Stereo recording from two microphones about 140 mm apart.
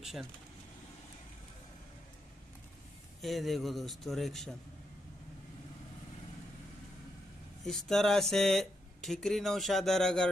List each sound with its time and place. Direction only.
0.0 s speech: centre (ahead or behind)
3.2 s speech: centre (ahead or behind)
7.6 s speech: 5° left (ahead or behind)